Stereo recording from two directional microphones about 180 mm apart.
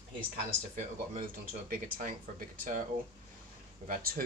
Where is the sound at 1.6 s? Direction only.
50° right (ahead or behind).